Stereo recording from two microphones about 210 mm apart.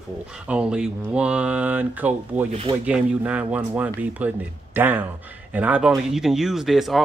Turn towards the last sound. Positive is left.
turn(degrees=0)  # may be behind; listen again after turning